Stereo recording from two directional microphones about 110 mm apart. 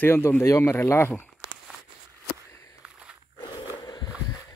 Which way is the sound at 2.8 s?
10° right (ahead or behind).